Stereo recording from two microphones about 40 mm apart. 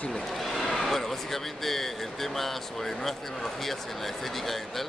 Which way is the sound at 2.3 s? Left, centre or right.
Centre.